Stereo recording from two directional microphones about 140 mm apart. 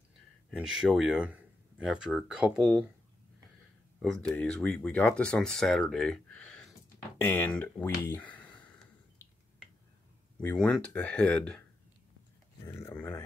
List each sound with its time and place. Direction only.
0.5 s speech: 5° right (ahead or behind)
4.0 s speech: 5° left (ahead or behind)
10.4 s speech: 5° left (ahead or behind)
12.6 s a sound: 20° left (ahead or behind)
12.9 s speech: 10° left (ahead or behind)